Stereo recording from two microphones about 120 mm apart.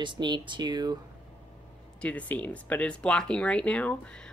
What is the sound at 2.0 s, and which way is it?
Speech, 10° left (ahead or behind).